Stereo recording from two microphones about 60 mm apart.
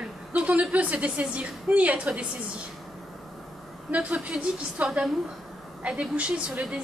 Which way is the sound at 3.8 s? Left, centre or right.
Right.